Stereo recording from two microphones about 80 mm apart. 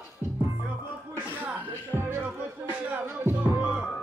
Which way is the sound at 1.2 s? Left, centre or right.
Centre.